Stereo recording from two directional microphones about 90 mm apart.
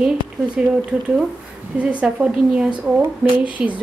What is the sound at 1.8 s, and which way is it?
Speech, 15° right (ahead or behind).